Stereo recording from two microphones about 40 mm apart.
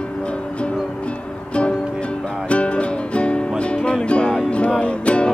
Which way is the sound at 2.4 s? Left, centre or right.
Left.